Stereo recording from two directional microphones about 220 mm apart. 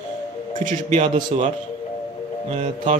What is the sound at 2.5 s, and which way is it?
Speech, 35° right (ahead or behind).